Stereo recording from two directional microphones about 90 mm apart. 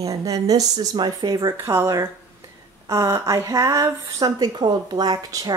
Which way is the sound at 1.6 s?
25° right (ahead or behind).